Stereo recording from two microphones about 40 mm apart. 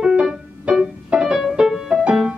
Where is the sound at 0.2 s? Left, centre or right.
Centre.